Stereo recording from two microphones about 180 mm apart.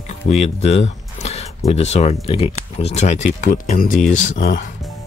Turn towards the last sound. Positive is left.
turn(degrees=45)  # may be behind; listen again after turning